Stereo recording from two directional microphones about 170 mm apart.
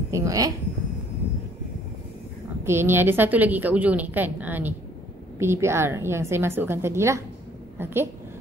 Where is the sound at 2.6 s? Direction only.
15° right (ahead or behind).